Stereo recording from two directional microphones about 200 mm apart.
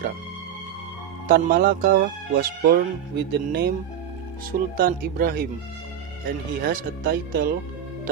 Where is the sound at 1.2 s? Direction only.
40° right (ahead or behind).